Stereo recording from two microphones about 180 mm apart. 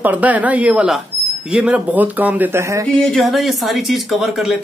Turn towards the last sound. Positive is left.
turn(degrees=0)  # may be behind; listen again after turning